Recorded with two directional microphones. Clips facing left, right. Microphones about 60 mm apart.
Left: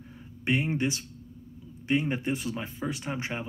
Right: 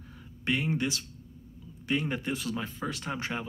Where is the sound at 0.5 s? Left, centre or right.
Left.